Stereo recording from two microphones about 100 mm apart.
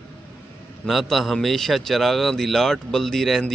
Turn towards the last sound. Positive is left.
turn(degrees=5)  # may be behind; listen again after turning